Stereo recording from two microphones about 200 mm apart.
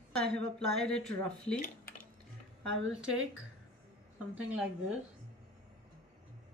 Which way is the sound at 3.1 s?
80° right.